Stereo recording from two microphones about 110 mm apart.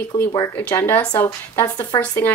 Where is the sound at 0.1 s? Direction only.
35° left (ahead or behind).